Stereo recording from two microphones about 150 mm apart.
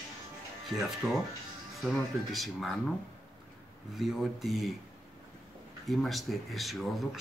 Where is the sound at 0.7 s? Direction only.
5° right (ahead or behind).